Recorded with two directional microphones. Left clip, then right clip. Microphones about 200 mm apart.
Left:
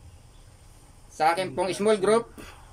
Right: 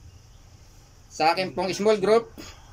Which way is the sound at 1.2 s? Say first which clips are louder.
Right 1 dB; 5° right (ahead or behind).